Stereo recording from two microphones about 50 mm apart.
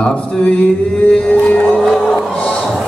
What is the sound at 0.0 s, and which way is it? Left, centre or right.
Mantra, centre.